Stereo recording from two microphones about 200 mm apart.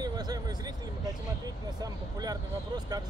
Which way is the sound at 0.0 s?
20° right (ahead or behind).